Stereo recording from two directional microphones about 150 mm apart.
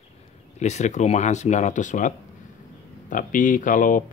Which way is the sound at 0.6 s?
50° left (ahead or behind).